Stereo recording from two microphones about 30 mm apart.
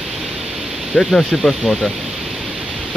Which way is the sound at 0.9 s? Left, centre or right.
Left.